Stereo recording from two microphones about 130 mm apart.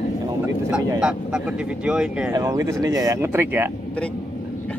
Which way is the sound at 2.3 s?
25° right (ahead or behind).